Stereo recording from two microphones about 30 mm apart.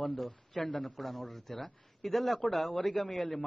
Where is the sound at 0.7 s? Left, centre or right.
Left.